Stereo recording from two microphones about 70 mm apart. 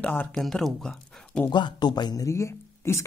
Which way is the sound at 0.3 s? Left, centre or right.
Centre.